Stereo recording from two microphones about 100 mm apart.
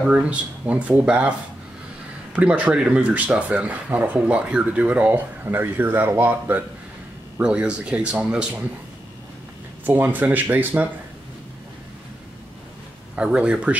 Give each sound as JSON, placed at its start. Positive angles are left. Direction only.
{"t": 0.0, "sound": "speech", "side_deg": -10}
{"t": 2.3, "sound": "speech", "side_deg": -15}
{"t": 9.8, "sound": "speech", "side_deg": -20}
{"t": 13.1, "sound": "speech", "side_deg": -10}